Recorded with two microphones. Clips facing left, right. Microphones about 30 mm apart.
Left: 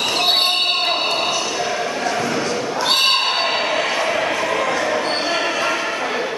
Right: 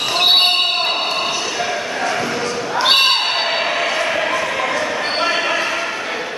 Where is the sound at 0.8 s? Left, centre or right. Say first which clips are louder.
Even; centre.